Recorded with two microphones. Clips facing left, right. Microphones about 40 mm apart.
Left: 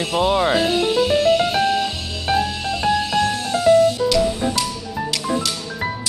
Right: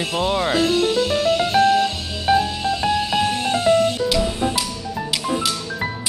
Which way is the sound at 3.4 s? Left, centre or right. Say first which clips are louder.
Left 4 dB; right.